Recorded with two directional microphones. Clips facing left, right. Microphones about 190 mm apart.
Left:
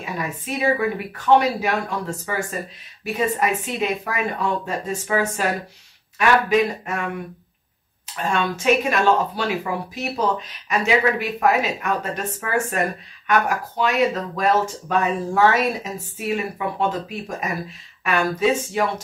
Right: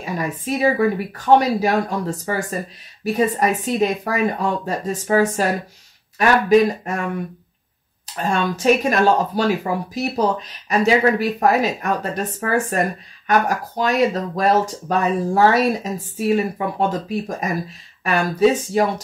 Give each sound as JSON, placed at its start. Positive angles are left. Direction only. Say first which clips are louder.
{"t": 0.0, "sound": "speech", "louder": "right 4 dB", "side_deg": -40}
{"t": 8.2, "sound": "speech", "louder": "right 2 dB", "side_deg": -40}
{"t": 18.0, "sound": "speech", "louder": "right 3 dB", "side_deg": -40}